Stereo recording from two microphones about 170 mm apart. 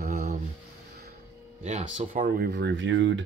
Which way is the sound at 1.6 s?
45° right (ahead or behind).